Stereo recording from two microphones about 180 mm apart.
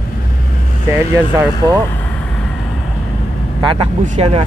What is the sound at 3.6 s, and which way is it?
Speech, 30° right (ahead or behind).